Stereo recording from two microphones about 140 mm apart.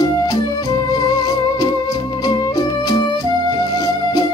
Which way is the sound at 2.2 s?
25° left (ahead or behind).